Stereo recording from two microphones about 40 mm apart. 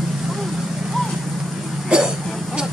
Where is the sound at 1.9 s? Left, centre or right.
Right.